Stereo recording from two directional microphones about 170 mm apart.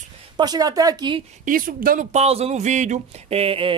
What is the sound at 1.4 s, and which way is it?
Speech, 55° right (ahead or behind).